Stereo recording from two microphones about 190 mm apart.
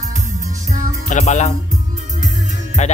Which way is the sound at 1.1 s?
40° left (ahead or behind).